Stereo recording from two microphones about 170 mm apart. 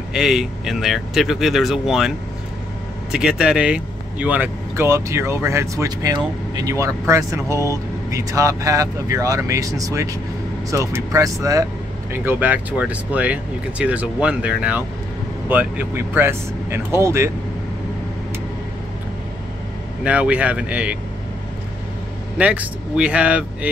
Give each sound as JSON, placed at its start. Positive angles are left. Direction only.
{"t": 0.1, "sound": "speech", "side_deg": 0}
{"t": 20.0, "sound": "speech", "side_deg": -5}
{"t": 22.4, "sound": "speech", "side_deg": -10}